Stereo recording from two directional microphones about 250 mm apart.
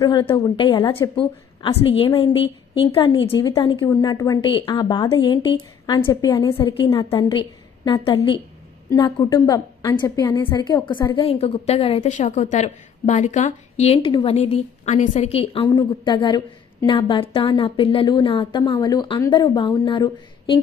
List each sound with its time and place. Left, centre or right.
0.0 s a woman's voice: centre